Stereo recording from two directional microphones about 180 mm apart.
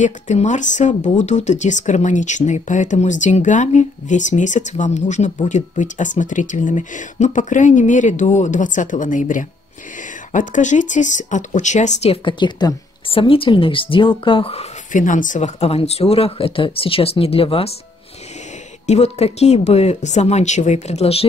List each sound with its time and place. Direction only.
0.0 s speech: 40° left (ahead or behind)
18.9 s speech: 35° left (ahead or behind)